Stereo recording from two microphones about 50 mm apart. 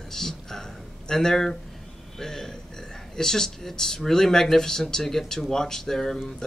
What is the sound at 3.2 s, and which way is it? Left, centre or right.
Speech, centre.